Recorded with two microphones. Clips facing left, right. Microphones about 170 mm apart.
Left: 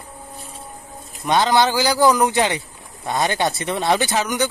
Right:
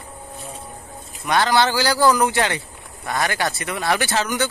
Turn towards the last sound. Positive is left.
turn(degrees=15)  # may be behind; listen again after turning